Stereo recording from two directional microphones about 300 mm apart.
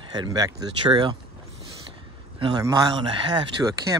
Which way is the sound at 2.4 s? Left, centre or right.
Centre.